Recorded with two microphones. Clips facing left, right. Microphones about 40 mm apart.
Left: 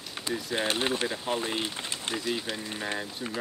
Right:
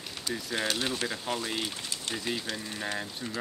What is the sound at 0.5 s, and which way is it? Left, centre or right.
Speech, left.